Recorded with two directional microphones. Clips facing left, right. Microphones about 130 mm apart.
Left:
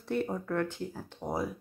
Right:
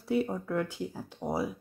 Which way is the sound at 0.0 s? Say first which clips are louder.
Right 2 dB; 5° right (ahead or behind).